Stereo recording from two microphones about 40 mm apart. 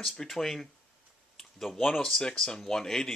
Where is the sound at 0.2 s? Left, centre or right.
Centre.